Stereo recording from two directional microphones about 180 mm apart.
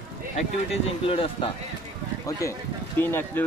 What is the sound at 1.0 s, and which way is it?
Speech, 30° left (ahead or behind).